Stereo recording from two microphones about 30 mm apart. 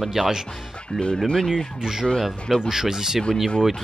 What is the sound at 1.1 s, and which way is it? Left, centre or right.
Speech, left.